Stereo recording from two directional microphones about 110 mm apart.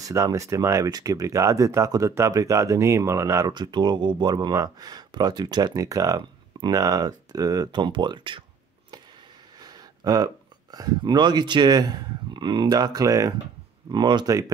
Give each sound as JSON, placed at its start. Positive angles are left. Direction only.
{"t": 0.0, "sound": "speech", "side_deg": -30}
{"t": 3.5, "sound": "speech", "side_deg": -40}
{"t": 9.6, "sound": "speech", "side_deg": -35}
{"t": 13.9, "sound": "speech", "side_deg": -45}